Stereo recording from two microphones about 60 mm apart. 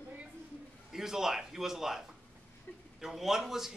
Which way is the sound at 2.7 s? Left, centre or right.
Left.